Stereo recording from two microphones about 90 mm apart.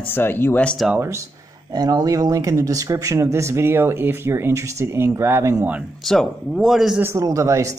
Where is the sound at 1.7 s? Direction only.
45° right (ahead or behind); by 5.6 s 30° right (ahead or behind).